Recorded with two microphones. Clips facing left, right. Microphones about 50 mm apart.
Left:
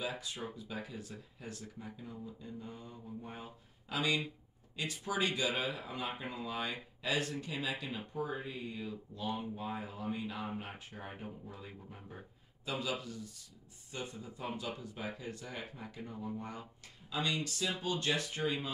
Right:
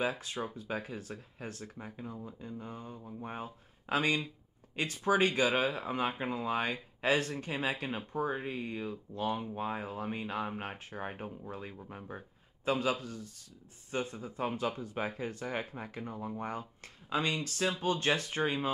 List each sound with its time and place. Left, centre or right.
0.0 s speech: right